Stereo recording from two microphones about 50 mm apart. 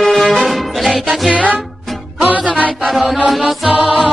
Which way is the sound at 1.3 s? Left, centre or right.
Right.